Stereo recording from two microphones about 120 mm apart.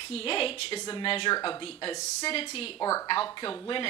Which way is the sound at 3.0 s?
40° left (ahead or behind).